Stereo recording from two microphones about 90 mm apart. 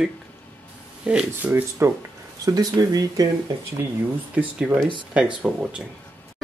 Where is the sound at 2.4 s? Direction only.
45° right (ahead or behind).